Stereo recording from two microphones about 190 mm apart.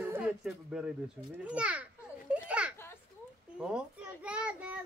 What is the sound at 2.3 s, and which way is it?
Children playing, 5° right (ahead or behind).